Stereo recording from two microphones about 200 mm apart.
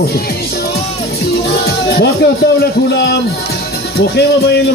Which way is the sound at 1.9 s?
55° left (ahead or behind).